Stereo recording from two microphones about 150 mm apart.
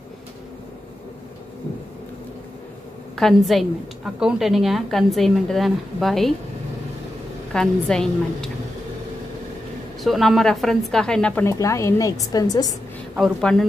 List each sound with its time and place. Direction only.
3.2 s a woman's voice: centre (ahead or behind)
7.5 s a woman's voice: 5° left (ahead or behind)
10.0 s a woman's voice: centre (ahead or behind)
11.4 s a woman's voice: 20° left (ahead or behind)
13.1 s a woman's voice: centre (ahead or behind)